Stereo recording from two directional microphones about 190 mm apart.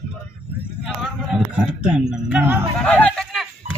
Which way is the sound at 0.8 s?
5° right (ahead or behind).